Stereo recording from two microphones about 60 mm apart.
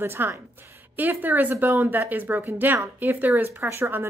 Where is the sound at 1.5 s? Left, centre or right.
Right.